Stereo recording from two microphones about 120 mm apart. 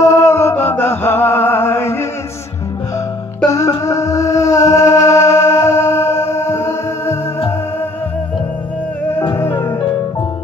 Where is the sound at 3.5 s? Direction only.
30° left (ahead or behind).